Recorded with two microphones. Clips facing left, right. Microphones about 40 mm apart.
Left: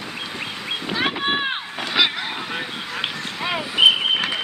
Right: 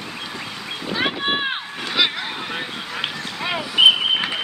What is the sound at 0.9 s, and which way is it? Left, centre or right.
Boat, centre.